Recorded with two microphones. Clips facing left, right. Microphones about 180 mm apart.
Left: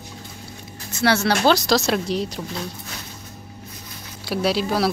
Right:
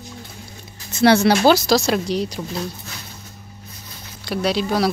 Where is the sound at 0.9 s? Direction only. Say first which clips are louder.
Right 5 dB; 15° right (ahead or behind).